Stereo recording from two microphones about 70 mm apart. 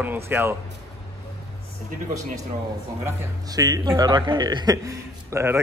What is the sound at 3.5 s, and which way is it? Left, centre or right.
Speech, right.